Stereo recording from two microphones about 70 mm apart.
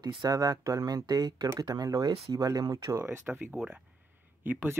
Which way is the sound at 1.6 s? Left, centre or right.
Right.